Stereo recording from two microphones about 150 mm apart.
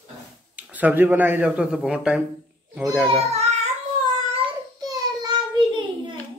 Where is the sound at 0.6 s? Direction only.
10° right (ahead or behind).